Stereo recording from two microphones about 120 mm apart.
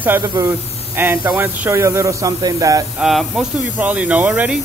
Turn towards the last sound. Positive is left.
turn(degrees=-10)  # may be behind; listen again after turning